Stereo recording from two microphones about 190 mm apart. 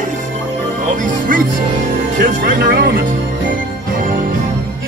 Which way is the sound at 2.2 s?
50° right (ahead or behind).